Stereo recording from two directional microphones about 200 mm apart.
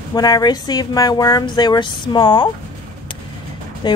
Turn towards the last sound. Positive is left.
turn(degrees=25)  # may be behind; listen again after turning